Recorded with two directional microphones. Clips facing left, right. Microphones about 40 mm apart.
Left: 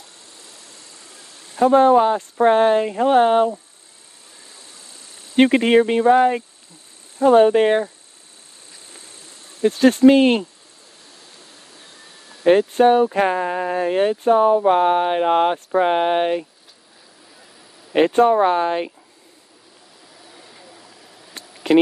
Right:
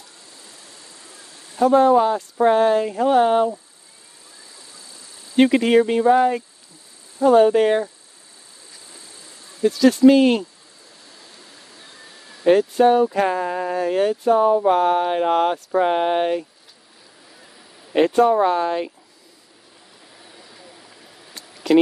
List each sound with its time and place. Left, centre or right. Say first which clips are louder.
1.6 s speech: left 1 dB; left
5.3 s speech: left 1 dB; left
8.8 s insect: left 1 dB; left
12.4 s speech: left 1 dB; left
17.9 s speech: left 1 dB; left
21.7 s speech: left 1 dB; left